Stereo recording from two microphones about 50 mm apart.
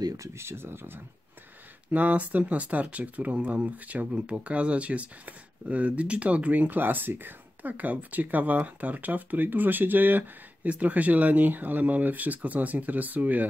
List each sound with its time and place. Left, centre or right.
0.2 s speech: right
1.9 s speech: right